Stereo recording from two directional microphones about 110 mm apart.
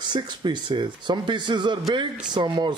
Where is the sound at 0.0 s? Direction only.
40° right (ahead or behind).